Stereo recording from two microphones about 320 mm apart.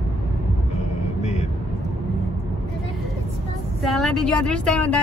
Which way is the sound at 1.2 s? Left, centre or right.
Left.